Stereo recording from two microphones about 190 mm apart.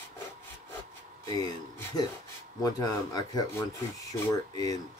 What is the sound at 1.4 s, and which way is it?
Speech, 20° left (ahead or behind).